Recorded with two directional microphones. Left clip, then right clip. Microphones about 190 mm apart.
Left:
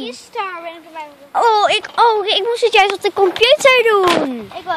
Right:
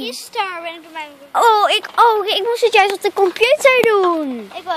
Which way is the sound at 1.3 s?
5° right (ahead or behind).